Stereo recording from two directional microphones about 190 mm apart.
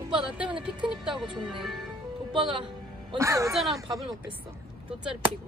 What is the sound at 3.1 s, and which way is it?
Speech, 15° right (ahead or behind).